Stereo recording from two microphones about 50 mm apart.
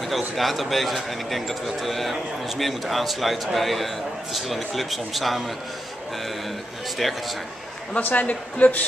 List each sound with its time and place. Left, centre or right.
0.4 s a man's voice: centre
7.0 s a man's voice: centre
7.9 s a man's voice: left